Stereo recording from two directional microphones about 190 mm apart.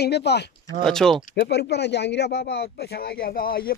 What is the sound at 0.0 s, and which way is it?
Speech, 60° left (ahead or behind).